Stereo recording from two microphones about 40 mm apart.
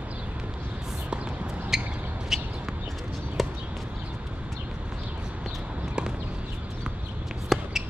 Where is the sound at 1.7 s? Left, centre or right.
Centre.